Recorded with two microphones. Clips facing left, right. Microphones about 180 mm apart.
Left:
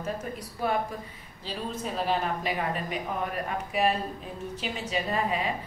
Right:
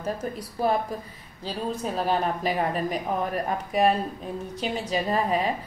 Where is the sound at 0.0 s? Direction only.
35° right (ahead or behind).